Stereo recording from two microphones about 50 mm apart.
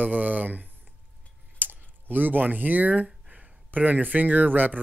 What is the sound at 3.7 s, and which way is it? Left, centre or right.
Speech, right.